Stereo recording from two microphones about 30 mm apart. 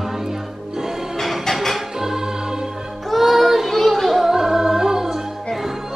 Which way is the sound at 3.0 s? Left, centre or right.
Centre.